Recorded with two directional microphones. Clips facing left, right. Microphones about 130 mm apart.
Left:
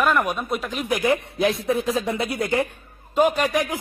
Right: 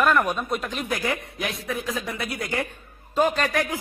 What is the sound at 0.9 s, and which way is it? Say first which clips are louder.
A man's voice: left 8 dB; 20° left (ahead or behind).